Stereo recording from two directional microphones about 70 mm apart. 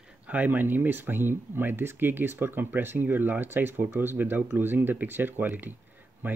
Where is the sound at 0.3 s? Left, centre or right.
Right.